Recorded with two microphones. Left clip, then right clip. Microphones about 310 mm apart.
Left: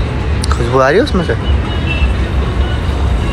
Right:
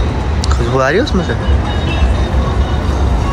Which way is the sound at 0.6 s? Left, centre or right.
Centre.